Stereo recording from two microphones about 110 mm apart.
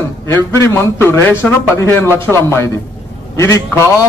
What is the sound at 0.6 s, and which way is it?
Speech, 25° left (ahead or behind).